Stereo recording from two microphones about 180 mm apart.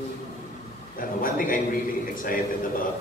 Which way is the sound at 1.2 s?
50° left (ahead or behind).